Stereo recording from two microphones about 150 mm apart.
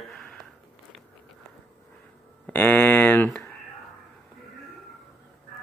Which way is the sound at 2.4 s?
10° left (ahead or behind).